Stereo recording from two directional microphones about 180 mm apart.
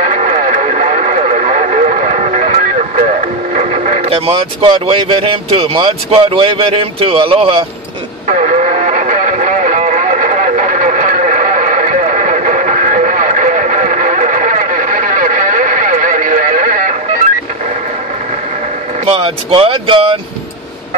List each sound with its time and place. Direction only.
0.0 s radio: 45° right (ahead or behind)
8.3 s music: 40° right (ahead or behind)
19.0 s speech: 30° right (ahead or behind)